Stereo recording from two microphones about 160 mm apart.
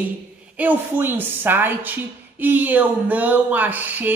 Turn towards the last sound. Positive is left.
turn(degrees=-10)  # may be behind; listen again after turning